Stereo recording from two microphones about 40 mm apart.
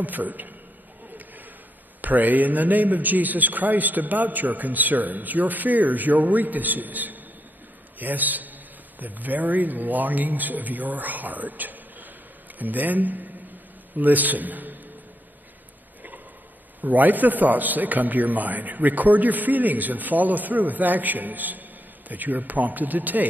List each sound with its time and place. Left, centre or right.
0.0 s a man's voice: right
2.0 s a man's voice: right
16.8 s a man's voice: right